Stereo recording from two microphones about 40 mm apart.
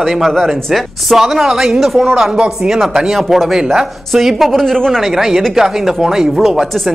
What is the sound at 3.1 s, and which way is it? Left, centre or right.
Speech, centre.